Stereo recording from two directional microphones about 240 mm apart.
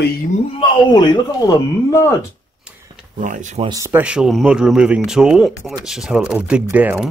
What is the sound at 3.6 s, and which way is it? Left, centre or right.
Speech, centre.